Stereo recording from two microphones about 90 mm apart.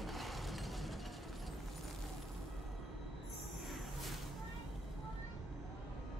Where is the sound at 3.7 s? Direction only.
Centre (ahead or behind).